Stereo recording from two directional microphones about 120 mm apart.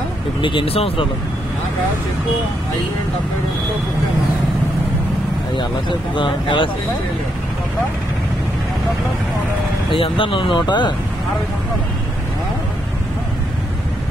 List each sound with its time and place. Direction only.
0.4 s speech: 45° left (ahead or behind)
5.6 s speech: 40° left (ahead or behind)
9.8 s speech: 50° left (ahead or behind)